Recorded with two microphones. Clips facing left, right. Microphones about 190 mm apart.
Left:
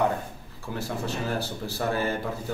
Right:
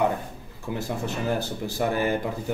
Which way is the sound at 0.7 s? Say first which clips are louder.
Right 1 dB; 15° right (ahead or behind).